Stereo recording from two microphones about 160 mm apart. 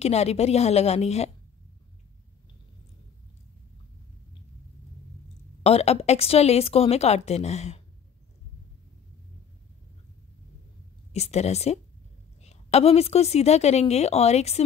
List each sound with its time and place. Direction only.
0.0 s a woman's voice: 40° left (ahead or behind)
5.6 s a woman's voice: 40° left (ahead or behind)
11.1 s a woman's voice: 40° left (ahead or behind)